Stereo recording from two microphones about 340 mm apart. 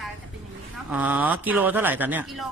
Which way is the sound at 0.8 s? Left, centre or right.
Centre.